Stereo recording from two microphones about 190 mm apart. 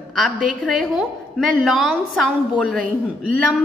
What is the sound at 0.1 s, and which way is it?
A woman's voice, centre (ahead or behind).